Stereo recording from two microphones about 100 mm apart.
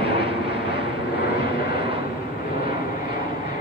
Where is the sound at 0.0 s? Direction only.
70° right (ahead or behind).